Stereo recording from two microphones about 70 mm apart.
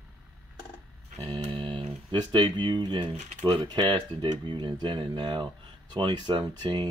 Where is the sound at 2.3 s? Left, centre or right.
Right.